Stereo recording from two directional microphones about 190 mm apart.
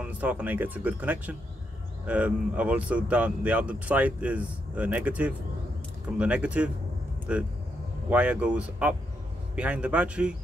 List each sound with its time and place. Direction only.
0.0 s speech: 10° right (ahead or behind)